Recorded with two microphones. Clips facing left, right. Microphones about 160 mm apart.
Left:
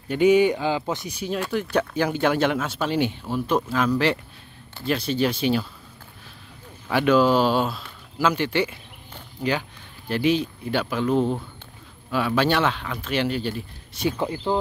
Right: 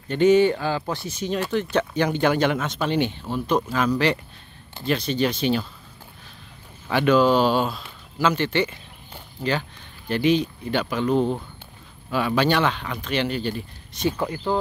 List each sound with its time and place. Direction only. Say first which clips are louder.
0.1 s speech: right 1 dB; 10° left (ahead or behind)
6.9 s speech: even; 5° left (ahead or behind)
14.1 s speech: even; 25° left (ahead or behind)